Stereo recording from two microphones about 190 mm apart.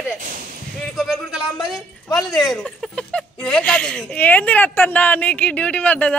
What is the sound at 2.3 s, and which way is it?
Speech, centre (ahead or behind).